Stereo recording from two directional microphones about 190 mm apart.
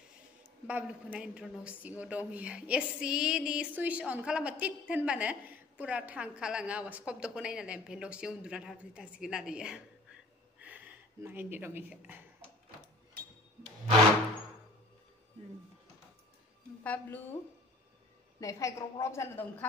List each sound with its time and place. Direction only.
0.7 s a woman's voice: 5° right (ahead or behind)
16.8 s a woman's voice: 10° left (ahead or behind)
18.4 s a woman's voice: 15° left (ahead or behind)